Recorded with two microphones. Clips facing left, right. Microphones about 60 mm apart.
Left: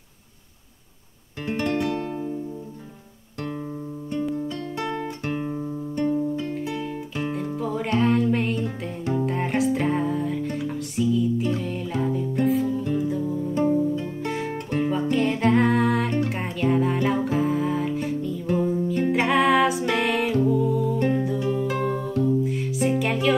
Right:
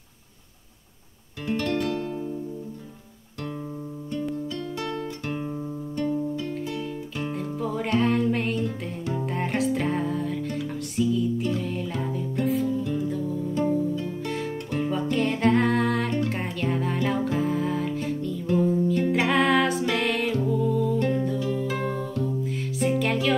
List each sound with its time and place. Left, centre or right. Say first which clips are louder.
1.4 s music: left 1 dB; left
4.5 s music: left 2 dB; left
7.3 s music: even; centre
12.6 s music: left 1 dB; left
12.9 s music: left 3 dB; centre
14.5 s guitar: left 3 dB; left
14.9 s music: left 2 dB; centre